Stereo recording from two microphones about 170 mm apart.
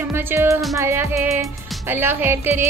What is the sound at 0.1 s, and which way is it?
A woman's voice, 10° right (ahead or behind).